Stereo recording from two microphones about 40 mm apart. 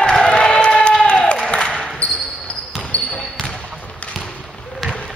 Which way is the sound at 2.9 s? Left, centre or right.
Left.